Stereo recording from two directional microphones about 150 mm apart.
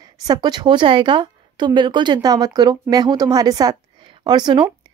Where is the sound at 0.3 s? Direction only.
30° right (ahead or behind).